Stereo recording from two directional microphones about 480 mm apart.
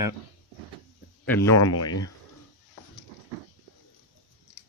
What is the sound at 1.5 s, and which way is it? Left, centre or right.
Speech, left.